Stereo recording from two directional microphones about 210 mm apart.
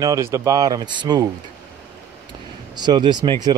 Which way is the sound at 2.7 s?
20° right (ahead or behind).